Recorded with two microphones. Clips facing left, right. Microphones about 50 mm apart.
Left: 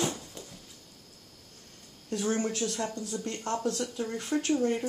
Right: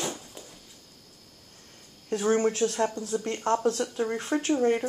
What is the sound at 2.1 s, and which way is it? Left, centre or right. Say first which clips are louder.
Speech: right 6 dB; right.